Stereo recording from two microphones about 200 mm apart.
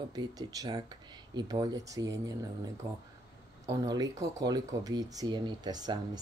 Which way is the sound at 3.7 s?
15° right (ahead or behind).